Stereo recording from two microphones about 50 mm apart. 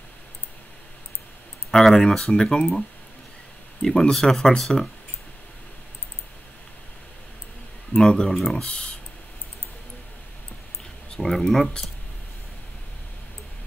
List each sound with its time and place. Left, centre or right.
1.7 s speech: centre
3.8 s speech: centre
7.9 s speech: centre
8.6 s speech: centre
11.1 s speech: centre